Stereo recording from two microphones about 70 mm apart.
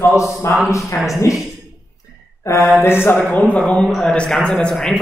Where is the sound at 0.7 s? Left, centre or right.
Left.